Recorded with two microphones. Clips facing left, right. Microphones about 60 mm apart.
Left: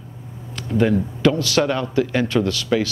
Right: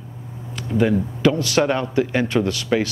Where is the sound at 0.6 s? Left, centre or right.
Centre.